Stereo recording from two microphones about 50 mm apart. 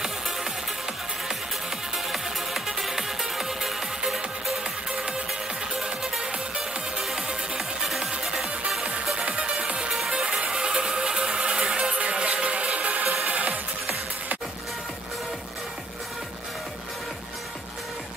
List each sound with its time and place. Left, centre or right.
2.1 s music: centre; by 13.6 s right